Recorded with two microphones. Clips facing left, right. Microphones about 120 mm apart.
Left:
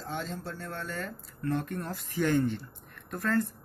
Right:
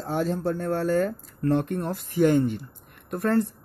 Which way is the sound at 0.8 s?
45° right (ahead or behind).